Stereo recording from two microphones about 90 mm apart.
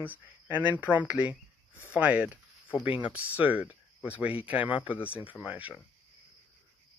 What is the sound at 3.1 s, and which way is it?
Speech, 15° right (ahead or behind).